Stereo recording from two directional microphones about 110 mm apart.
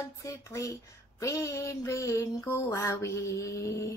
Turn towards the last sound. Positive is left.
turn(degrees=30)  # may be behind; listen again after turning